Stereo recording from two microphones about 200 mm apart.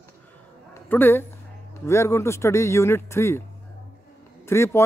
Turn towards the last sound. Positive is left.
turn(degrees=15)  # may be behind; listen again after turning